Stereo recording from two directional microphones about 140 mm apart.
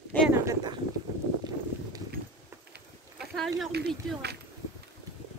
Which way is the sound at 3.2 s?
Centre (ahead or behind).